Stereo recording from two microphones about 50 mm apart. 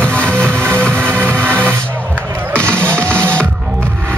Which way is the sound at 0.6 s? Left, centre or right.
Right.